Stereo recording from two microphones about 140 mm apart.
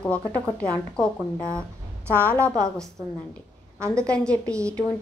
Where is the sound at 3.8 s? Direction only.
5° left (ahead or behind).